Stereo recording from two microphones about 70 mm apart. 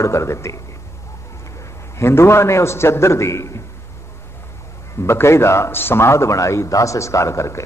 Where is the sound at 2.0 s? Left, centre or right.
Left.